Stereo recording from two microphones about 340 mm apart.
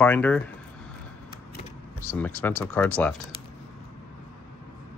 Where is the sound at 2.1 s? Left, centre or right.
Centre.